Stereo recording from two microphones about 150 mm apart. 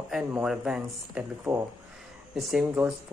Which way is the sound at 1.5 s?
20° right (ahead or behind).